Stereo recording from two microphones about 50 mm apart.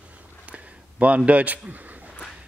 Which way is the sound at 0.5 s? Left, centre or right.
Right.